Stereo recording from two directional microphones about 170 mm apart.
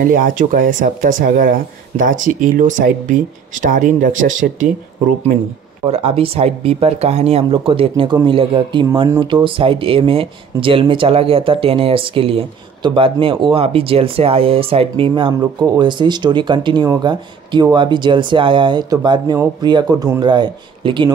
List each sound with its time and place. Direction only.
0.0 s speech: 50° right (ahead or behind)
5.9 s speech: 35° right (ahead or behind)